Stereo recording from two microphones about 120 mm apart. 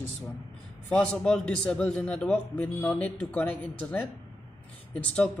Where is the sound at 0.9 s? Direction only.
5° left (ahead or behind).